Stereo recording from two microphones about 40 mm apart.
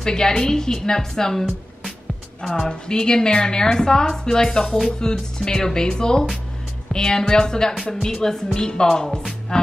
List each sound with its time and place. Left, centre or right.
0.0 s a woman's voice: centre
2.7 s a woman's voice: centre
9.5 s music: centre